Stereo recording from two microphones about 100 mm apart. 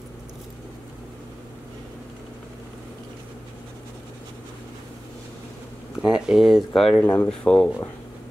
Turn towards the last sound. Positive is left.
turn(degrees=10)  # may be behind; listen again after turning